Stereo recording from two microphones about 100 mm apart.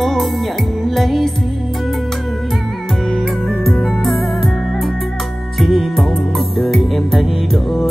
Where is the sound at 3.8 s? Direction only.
Centre (ahead or behind).